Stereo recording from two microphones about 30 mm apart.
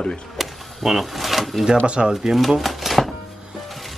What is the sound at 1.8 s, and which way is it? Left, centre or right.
Speech, right.